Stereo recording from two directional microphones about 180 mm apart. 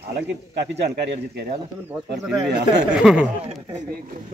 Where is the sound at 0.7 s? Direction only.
70° right (ahead or behind).